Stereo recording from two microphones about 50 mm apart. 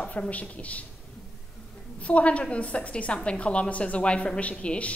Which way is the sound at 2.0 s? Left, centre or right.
Left.